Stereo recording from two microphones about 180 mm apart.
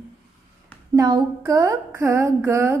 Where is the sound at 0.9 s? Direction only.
25° right (ahead or behind).